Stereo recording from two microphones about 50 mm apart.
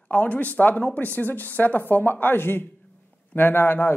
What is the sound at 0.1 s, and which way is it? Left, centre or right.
A man's voice, left.